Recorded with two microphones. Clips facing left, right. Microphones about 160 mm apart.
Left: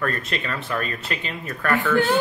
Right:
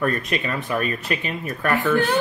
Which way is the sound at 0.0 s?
15° right (ahead or behind).